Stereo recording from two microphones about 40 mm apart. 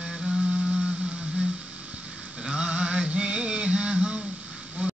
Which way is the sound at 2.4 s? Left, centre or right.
Right.